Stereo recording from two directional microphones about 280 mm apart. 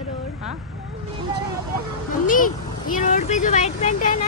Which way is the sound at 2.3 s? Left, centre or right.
Left.